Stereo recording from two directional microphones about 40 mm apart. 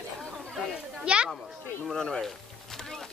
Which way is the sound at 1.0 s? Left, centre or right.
Right.